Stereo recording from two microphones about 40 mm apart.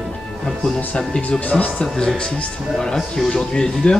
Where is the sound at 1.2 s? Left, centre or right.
Left.